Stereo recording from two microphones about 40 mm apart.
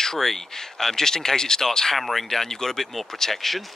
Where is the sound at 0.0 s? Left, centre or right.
Centre.